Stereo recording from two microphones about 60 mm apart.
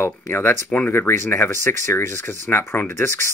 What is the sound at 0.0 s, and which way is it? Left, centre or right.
Speech, left.